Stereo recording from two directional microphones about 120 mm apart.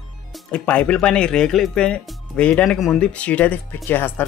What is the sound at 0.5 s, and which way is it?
Speech, 10° left (ahead or behind).